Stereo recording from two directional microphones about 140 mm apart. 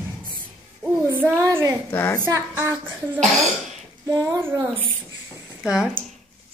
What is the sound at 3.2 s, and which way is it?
Speech, centre (ahead or behind).